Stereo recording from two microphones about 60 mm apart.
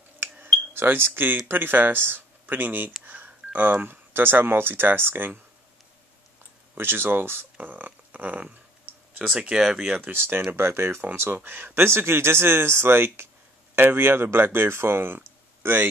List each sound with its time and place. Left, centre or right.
0.2 s a sound: right
1.5 s speech: right
6.8 s speech: right
7.5 s a sound: right
9.2 s speech: centre
10.1 s speech: right